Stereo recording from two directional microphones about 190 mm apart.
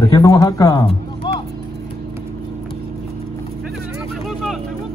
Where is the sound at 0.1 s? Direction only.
20° left (ahead or behind).